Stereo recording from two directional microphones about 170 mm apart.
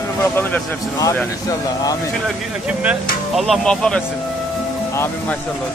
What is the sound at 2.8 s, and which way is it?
Speech, 5° right (ahead or behind).